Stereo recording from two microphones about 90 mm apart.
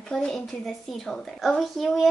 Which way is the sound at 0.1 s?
5° left (ahead or behind).